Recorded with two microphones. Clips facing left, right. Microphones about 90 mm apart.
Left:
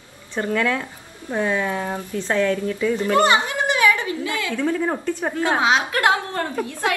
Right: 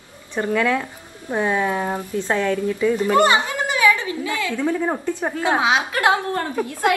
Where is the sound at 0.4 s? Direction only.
15° right (ahead or behind).